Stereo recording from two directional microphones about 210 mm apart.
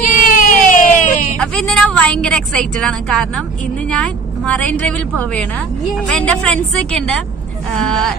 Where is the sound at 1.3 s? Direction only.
5° left (ahead or behind).